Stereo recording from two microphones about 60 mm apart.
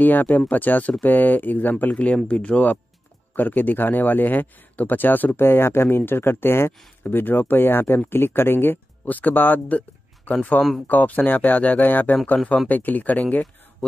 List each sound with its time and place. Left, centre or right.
0.0 s speech: left